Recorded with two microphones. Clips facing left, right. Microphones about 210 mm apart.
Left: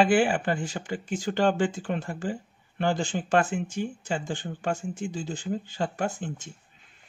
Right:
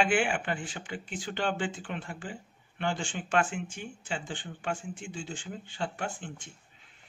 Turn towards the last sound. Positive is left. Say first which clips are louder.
# left 6 dB
turn(degrees=40)  # may be behind; listen again after turning